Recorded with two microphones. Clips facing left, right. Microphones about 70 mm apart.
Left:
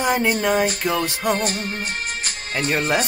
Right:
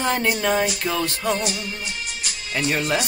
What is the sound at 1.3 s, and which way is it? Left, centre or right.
Speech, left.